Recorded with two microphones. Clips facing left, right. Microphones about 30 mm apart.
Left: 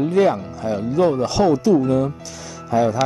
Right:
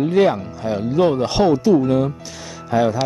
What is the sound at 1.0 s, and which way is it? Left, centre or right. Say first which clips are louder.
Speech: even; right.